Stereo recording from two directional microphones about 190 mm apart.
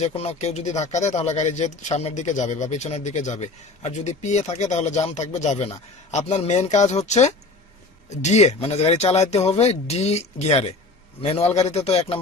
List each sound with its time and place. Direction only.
0.0 s speech: 35° left (ahead or behind)